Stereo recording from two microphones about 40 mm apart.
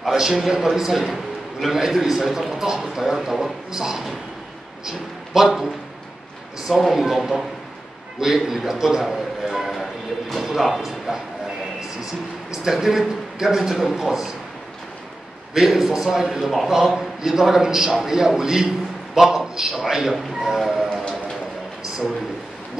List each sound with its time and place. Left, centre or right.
0.1 s a man's voice: centre
6.8 s a man's voice: centre
12.6 s a man's voice: centre
15.5 s a man's voice: centre
20.7 s music: centre